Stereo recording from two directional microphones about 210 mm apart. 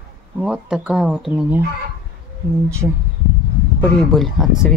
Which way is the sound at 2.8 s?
15° right (ahead or behind).